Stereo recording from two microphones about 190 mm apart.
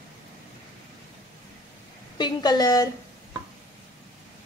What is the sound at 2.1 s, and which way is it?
Speech, 20° left (ahead or behind).